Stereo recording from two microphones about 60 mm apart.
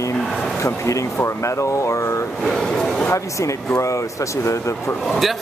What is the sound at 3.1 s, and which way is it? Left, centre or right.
Speech, left.